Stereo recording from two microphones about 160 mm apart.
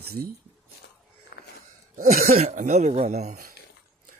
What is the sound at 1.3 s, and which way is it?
Wheeze, 85° left.